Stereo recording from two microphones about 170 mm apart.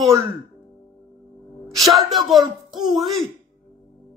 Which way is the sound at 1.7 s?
Centre (ahead or behind).